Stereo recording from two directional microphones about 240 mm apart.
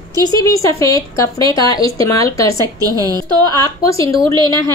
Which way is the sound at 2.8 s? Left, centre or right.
Centre.